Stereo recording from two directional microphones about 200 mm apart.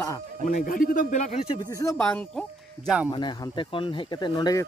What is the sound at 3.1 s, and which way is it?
Speech, 25° left (ahead or behind).